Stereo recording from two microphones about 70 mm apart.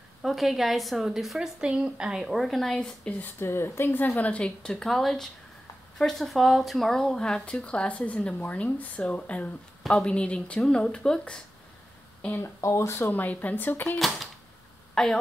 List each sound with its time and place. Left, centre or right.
0.2 s a woman's voice: centre
1.6 s a woman's voice: centre
3.3 s speech: left
4.2 s speech: centre
4.7 s a woman's voice: centre
12.5 s speech: left
13.1 s speech: left
13.9 s speech: centre